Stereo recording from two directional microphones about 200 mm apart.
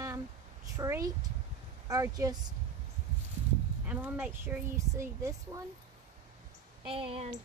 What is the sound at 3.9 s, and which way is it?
Speech, 10° right (ahead or behind).